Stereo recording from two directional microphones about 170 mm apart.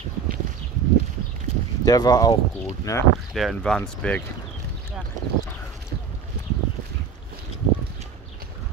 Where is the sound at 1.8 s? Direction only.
20° left (ahead or behind).